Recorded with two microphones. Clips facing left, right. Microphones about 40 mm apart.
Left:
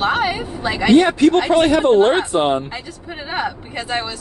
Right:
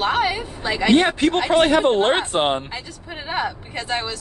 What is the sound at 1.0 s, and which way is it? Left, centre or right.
Speech, right.